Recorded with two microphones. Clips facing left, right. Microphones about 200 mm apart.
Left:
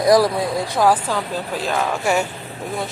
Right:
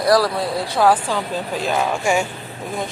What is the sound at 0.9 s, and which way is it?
Speech, 5° left (ahead or behind).